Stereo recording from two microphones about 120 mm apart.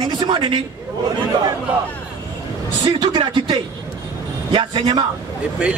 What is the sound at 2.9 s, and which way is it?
A woman's voice, 40° right (ahead or behind).